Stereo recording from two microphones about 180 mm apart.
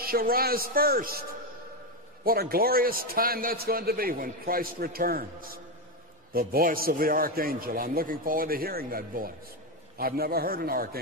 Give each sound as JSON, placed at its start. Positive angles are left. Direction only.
{"t": 0.0, "sound": "a man's voice", "side_deg": -55}
{"t": 2.2, "sound": "a man's voice", "side_deg": -55}